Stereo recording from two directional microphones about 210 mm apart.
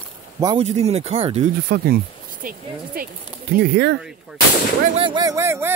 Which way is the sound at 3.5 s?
55° right (ahead or behind).